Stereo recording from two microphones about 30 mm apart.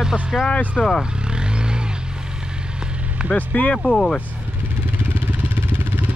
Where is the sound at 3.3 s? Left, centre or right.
Left.